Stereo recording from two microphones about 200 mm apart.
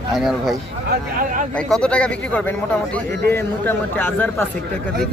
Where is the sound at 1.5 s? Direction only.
5° left (ahead or behind).